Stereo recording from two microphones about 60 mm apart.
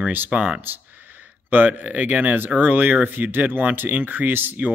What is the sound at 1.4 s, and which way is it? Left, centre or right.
Speech, right.